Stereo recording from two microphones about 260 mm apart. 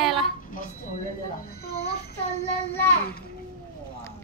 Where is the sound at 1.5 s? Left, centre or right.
Left.